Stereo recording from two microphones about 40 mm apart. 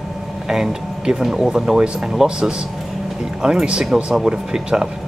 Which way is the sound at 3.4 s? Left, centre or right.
Right.